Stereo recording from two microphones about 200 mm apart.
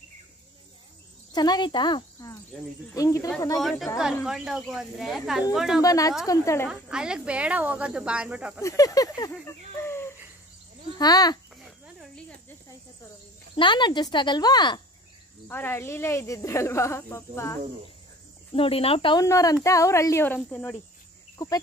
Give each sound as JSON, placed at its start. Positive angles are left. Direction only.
{"t": 1.3, "sound": "speech", "side_deg": 20}
{"t": 2.5, "sound": "speech", "side_deg": 0}
{"t": 2.9, "sound": "speech", "side_deg": 15}
{"t": 4.0, "sound": "speech", "side_deg": -5}
{"t": 5.8, "sound": "speech", "side_deg": 15}
{"t": 6.7, "sound": "speech", "side_deg": -5}
{"t": 8.5, "sound": "speech", "side_deg": 15}
{"t": 9.8, "sound": "a sound", "side_deg": 10}
{"t": 11.0, "sound": "speech", "side_deg": 20}
{"t": 11.6, "sound": "cricket", "side_deg": 0}
{"t": 13.6, "sound": "speech", "side_deg": 25}
{"t": 15.4, "sound": "speech", "side_deg": 10}
{"t": 18.5, "sound": "speech", "side_deg": 30}